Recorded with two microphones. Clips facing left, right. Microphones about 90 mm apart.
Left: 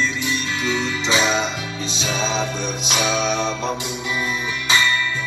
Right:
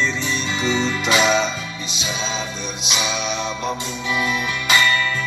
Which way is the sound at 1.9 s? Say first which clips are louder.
Left 4 dB; 45° left (ahead or behind).